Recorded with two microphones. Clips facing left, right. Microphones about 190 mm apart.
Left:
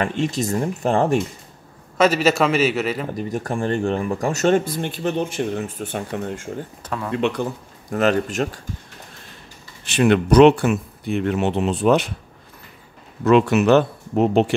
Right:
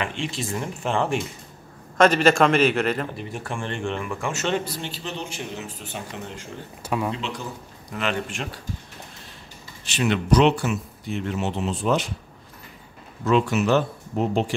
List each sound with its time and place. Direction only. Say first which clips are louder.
0.0 s speech: left 7 dB; 40° left (ahead or behind)
2.0 s a man's voice: even; 5° left (ahead or behind)
3.2 s speech: left 7 dB; 40° left (ahead or behind)
6.8 s speech: right 3 dB; 15° right (ahead or behind)
7.2 s speech: left 11 dB; 60° left (ahead or behind)
7.9 s speech: left 8 dB; 40° left (ahead or behind)
9.8 s speech: left 5 dB; 55° left (ahead or behind)
13.2 s speech: left 6 dB; 65° left (ahead or behind)